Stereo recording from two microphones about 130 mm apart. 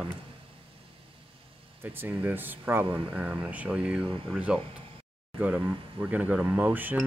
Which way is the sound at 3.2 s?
10° right (ahead or behind).